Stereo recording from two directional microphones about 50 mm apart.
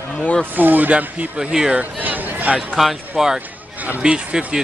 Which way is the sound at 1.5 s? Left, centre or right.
Centre.